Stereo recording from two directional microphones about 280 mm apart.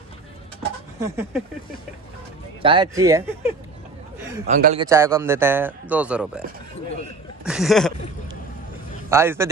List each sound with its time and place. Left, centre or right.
0.6 s a sound: centre
2.6 s speech: centre
4.5 s a man's voice: right
4.7 s speech: centre
7.4 s a sound: centre
9.1 s speech: centre